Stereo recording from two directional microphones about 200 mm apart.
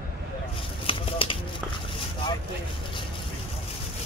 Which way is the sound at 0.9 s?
25° left (ahead or behind).